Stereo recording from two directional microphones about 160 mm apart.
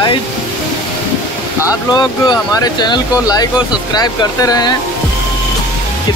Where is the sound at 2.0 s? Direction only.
25° left (ahead or behind).